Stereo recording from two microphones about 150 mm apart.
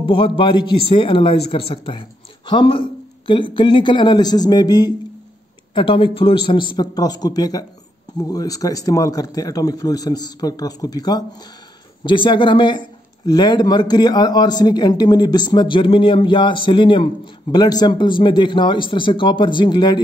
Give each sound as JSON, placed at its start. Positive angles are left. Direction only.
{"t": 0.0, "sound": "a man's voice", "side_deg": 35}